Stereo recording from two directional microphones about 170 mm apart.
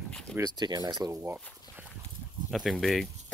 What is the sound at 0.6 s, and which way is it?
Speech, 25° right (ahead or behind).